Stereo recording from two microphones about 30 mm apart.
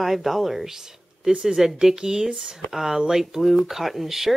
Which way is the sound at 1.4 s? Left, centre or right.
Centre.